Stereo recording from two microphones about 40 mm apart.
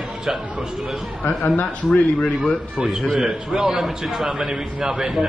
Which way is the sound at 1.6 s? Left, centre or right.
Left.